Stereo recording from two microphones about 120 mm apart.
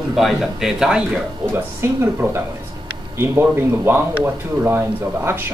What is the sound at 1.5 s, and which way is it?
Speech, 15° right (ahead or behind).